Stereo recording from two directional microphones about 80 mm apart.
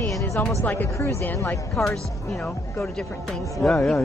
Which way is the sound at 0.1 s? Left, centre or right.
Left.